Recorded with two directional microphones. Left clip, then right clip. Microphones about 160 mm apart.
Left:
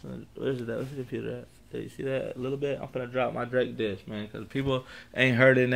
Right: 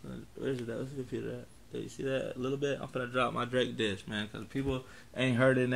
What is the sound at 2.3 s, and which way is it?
Speech, 20° right (ahead or behind).